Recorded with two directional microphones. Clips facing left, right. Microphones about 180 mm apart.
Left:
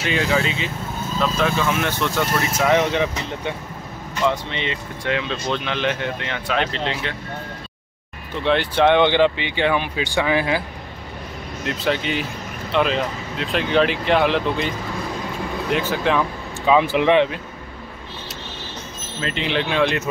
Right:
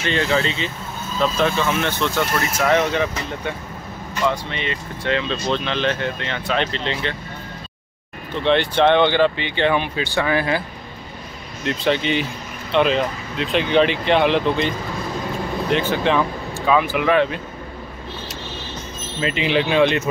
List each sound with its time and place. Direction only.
0.0 s speech: 10° left (ahead or behind)
5.1 s speech: 10° left (ahead or behind)
8.5 s speech: 5° left (ahead or behind)
11.6 s speech: 5° left (ahead or behind)
15.7 s speech: 5° left (ahead or behind)
16.6 s speech: 25° left (ahead or behind)
19.2 s speech: 5° right (ahead or behind)